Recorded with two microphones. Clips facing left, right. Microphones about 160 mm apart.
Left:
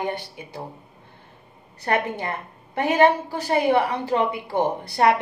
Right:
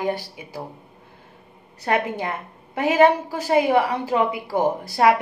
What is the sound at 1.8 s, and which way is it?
A woman's voice, 10° right (ahead or behind).